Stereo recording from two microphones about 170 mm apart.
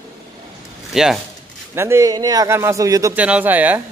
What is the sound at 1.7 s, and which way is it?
A man's voice, 15° right (ahead or behind).